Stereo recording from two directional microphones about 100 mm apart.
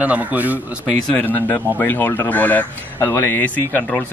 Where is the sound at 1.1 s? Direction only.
15° left (ahead or behind).